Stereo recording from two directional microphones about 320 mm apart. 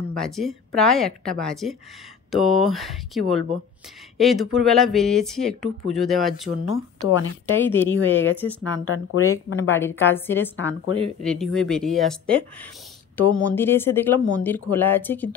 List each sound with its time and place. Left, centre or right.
0.1 s speech: centre
7.5 s speech: centre
8.7 s speech: left
9.7 s speech: centre
10.5 s speech: left
11.2 s speech: centre